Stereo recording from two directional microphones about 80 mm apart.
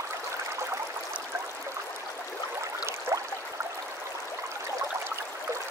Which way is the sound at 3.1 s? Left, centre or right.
Right.